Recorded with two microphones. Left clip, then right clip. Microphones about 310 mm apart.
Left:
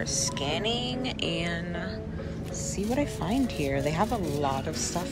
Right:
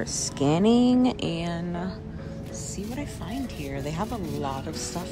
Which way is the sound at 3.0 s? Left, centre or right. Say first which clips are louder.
Left 8 dB; centre.